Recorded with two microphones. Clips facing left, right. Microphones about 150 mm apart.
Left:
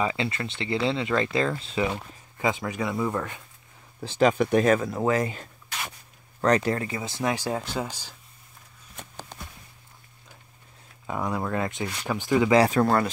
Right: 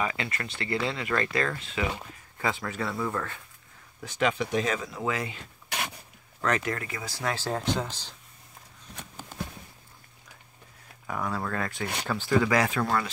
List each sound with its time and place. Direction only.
0.0 s speech: 25° left (ahead or behind)
4.0 s speech: 35° left (ahead or behind)
6.4 s speech: 35° left (ahead or behind); by 8.1 s 10° left (ahead or behind)
11.1 s speech: 20° left (ahead or behind)
12.5 s speech: 35° left (ahead or behind)